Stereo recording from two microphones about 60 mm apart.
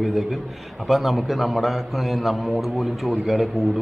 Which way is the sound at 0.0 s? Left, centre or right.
Centre.